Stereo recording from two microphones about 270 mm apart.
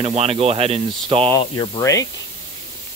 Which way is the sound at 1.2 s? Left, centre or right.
Centre.